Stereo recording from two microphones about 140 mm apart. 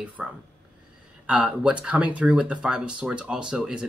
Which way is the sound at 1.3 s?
10° right (ahead or behind).